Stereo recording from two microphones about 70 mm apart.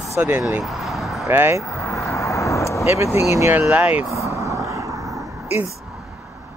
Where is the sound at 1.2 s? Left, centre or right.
Right.